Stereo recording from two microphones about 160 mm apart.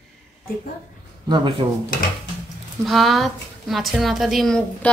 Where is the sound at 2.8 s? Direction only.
Centre (ahead or behind).